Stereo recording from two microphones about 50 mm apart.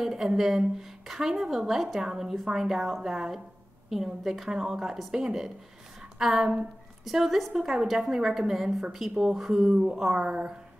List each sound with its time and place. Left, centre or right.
0.0 s a woman's voice: centre
10.1 s speech: centre